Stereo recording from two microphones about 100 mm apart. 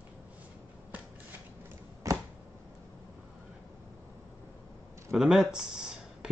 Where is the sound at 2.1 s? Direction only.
35° right (ahead or behind).